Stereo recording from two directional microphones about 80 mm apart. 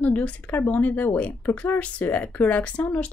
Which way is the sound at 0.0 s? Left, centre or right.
Centre.